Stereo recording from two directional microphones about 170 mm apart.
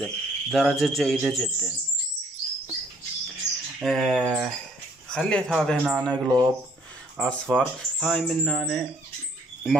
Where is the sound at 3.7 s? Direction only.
Centre (ahead or behind).